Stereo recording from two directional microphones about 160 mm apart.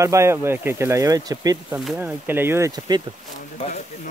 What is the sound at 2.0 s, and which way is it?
Speech, 10° right (ahead or behind).